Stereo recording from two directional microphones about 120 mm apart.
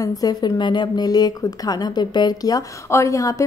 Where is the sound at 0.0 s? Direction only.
30° left (ahead or behind).